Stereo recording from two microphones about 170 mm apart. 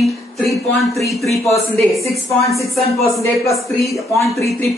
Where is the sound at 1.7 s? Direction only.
15° left (ahead or behind).